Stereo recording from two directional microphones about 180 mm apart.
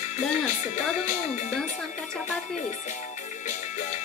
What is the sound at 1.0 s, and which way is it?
Speech, 40° left (ahead or behind).